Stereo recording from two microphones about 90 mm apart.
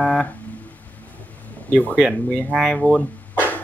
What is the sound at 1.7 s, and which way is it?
Speech, 15° left (ahead or behind).